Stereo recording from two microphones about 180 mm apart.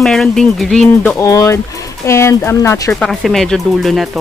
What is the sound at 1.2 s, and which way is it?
Speech, 20° left (ahead or behind).